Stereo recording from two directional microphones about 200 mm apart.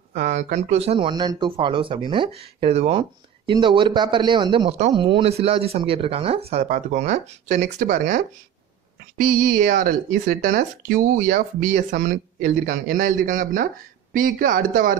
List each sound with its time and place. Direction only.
0.1 s speech: 40° right (ahead or behind)
9.2 s speech: 45° right (ahead or behind)